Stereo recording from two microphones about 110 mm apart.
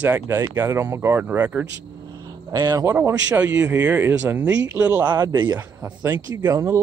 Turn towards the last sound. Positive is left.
turn(degrees=-25)  # may be behind; listen again after turning